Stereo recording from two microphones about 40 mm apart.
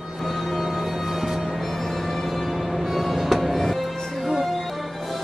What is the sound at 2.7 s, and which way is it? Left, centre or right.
Music, centre.